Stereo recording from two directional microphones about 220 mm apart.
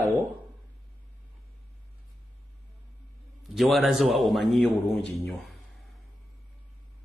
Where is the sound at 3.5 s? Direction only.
Centre (ahead or behind).